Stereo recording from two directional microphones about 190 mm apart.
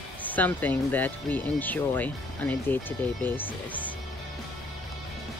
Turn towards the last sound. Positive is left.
turn(degrees=10)  # may be behind; listen again after turning